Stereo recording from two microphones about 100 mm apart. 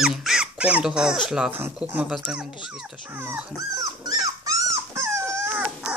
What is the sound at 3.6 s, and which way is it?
Dog, 40° right (ahead or behind).